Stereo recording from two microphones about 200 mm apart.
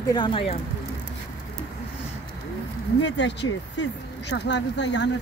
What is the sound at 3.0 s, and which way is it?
Speech, 60° left (ahead or behind).